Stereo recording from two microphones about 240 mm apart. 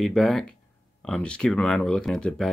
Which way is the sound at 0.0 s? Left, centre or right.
Centre.